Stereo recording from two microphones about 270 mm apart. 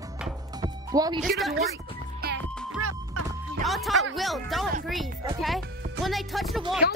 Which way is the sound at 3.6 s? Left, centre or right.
Centre.